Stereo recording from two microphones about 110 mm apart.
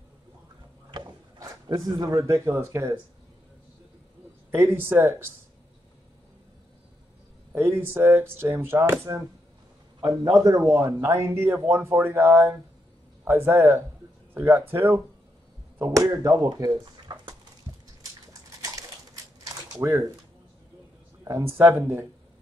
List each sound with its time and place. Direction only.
0.9 s wood: 40° right (ahead or behind)
1.9 s speech: 35° right (ahead or behind)
4.5 s speech: 20° right (ahead or behind)
7.5 s speech: 20° right (ahead or behind)
9.9 s a sound: 30° right (ahead or behind)
10.2 s speech: 35° right (ahead or behind)
17.7 s a sound: 30° right (ahead or behind)
19.7 s speech: 35° right (ahead or behind)
21.2 s speech: 25° right (ahead or behind)